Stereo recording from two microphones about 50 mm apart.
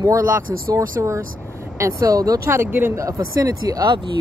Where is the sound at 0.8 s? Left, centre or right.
Right.